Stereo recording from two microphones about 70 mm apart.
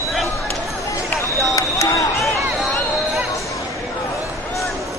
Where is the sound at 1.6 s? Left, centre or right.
Left.